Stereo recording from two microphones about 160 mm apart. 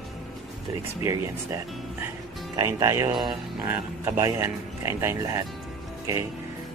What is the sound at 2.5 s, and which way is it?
Speech, 20° right (ahead or behind).